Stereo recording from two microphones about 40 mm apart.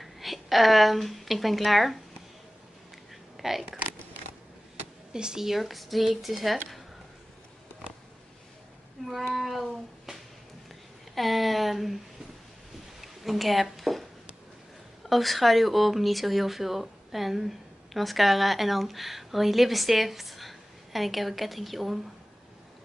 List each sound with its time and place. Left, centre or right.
0.0 s a woman's voice: centre
3.3 s a sound: centre
5.1 s speech: centre
5.5 s speech: centre
9.3 s a sound: centre
11.1 s speech: centre
13.0 s a woman's voice: centre
15.0 s speech: centre